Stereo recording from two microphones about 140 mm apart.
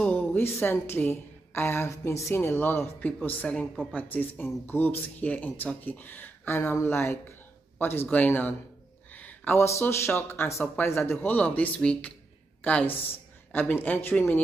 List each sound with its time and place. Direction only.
0.0 s a woman's voice: 10° left (ahead or behind)